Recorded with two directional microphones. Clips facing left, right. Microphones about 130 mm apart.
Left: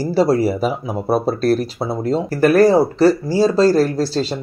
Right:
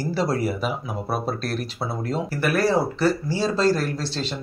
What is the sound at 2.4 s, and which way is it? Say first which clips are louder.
Speech: left 9 dB; 40° left (ahead or behind).